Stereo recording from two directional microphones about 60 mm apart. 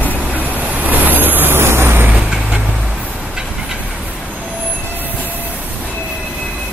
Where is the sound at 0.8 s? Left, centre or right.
Right.